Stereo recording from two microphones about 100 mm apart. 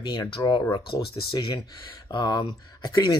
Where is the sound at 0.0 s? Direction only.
45° left (ahead or behind).